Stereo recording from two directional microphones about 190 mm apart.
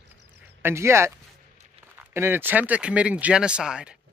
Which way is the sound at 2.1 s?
10° right (ahead or behind).